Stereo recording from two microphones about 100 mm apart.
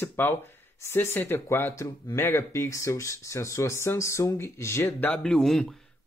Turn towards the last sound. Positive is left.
turn(degrees=5)  # may be behind; listen again after turning